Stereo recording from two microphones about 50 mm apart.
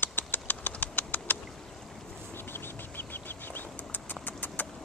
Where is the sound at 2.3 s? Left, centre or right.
Left.